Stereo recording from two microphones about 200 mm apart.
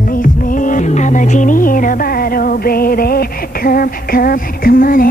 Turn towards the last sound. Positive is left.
turn(degrees=45)  # may be behind; listen again after turning